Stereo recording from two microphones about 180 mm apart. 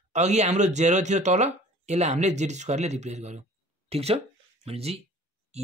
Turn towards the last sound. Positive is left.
turn(degrees=-35)  # may be behind; listen again after turning